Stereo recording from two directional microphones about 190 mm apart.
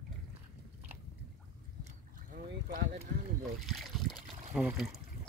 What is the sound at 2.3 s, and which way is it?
Boat, 45° right (ahead or behind).